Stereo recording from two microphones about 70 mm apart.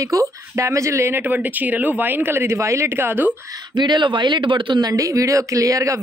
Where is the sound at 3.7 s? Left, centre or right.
Right.